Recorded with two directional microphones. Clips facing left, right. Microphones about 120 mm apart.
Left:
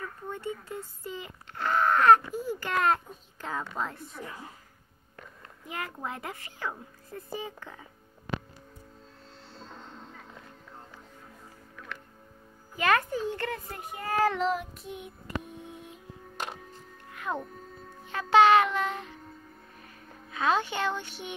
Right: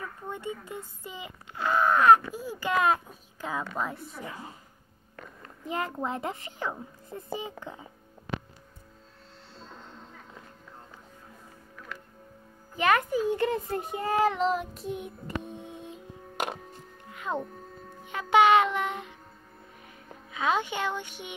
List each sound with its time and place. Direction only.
0.3 s speech: 15° right (ahead or behind)
5.7 s a child's voice: 25° right (ahead or behind)
12.7 s a child's voice: 15° right (ahead or behind); by 15.0 s 35° right (ahead or behind)
15.4 s music: 25° right (ahead or behind)
17.1 s music: 20° right (ahead or behind)
18.0 s speech: 15° right (ahead or behind)
20.2 s speech: 15° right (ahead or behind)